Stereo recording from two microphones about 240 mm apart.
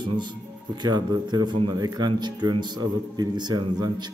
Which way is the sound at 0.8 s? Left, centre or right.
Centre.